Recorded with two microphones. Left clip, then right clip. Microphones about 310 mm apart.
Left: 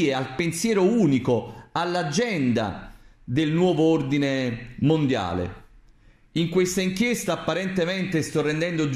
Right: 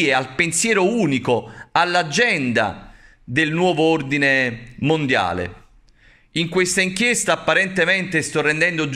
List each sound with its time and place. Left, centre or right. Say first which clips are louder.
0.0 s a man's voice: right 6 dB; right
6.5 s a man's voice: right 5 dB; right